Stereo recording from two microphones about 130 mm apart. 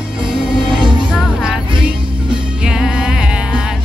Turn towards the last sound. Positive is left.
turn(degrees=-5)  # may be behind; listen again after turning